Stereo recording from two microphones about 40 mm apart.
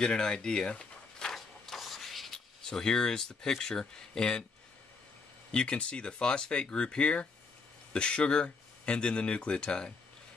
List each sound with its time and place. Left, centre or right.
0.0 s speech: centre
1.3 s printer: centre
2.3 s speech: centre
5.5 s speech: left